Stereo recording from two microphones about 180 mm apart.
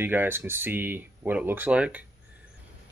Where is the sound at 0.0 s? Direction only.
10° right (ahead or behind).